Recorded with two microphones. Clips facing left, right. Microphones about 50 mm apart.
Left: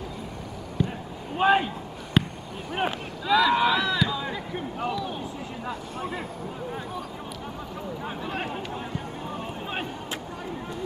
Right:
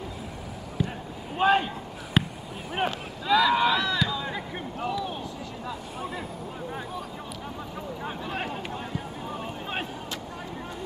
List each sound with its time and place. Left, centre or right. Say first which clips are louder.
0.7 s basketball bounce: left 2 dB; centre
2.7 s run: left 1 dB; centre
4.9 s a sound: even; centre
5.9 s vehicle: left 2 dB; centre
8.0 s vehicle: even; centre
8.7 s a sound: left 1 dB; centre